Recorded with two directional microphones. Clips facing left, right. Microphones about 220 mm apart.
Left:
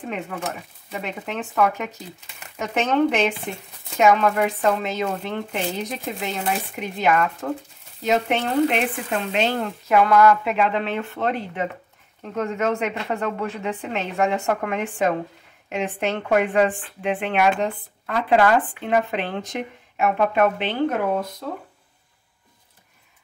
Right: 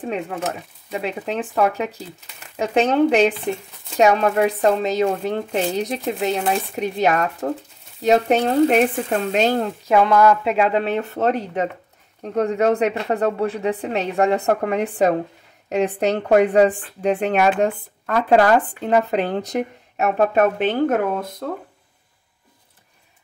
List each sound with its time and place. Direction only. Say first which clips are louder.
1.2 s speech: right 1 dB; 35° right (ahead or behind)
9.8 s speech: right 1 dB; 25° right (ahead or behind); by 21.5 s 50° right (ahead or behind)